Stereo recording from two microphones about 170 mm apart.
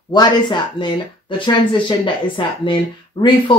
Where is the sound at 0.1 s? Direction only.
25° left (ahead or behind).